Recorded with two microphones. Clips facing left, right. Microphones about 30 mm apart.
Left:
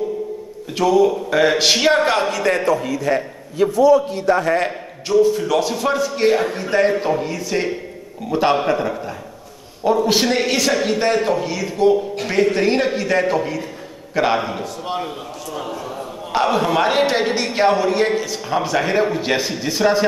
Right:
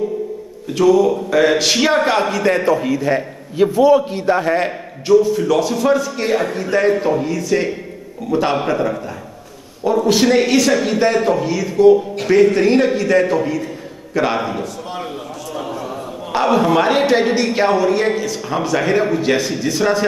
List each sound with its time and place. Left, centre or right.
0.7 s a man's voice: centre
3.5 s a man's voice: right
5.0 s a man's voice: centre
15.5 s a sound: centre
16.3 s a man's voice: centre